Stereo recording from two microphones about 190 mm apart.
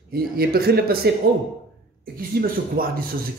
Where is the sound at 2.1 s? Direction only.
50° right (ahead or behind).